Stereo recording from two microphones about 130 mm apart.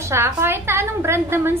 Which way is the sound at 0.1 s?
20° right (ahead or behind).